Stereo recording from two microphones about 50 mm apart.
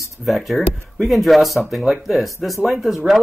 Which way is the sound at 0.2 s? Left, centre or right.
Centre.